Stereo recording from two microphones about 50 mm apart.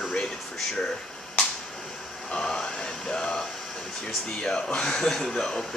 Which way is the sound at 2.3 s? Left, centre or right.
Centre.